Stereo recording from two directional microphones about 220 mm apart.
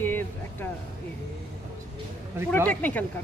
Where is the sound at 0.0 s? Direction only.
10° left (ahead or behind).